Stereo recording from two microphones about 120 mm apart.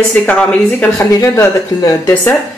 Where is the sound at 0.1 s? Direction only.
10° left (ahead or behind).